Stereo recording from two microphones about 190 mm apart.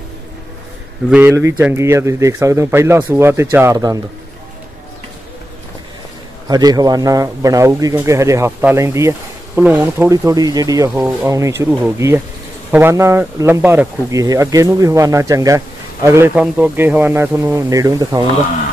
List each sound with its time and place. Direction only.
1.1 s speech: 10° right (ahead or behind)
6.4 s speech: 20° right (ahead or behind)